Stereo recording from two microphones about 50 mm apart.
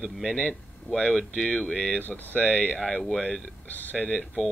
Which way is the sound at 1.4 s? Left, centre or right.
Left.